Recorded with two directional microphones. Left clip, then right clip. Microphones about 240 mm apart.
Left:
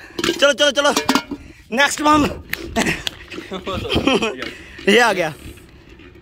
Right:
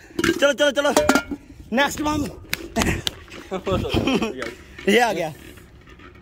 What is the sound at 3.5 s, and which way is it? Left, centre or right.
Speech, right.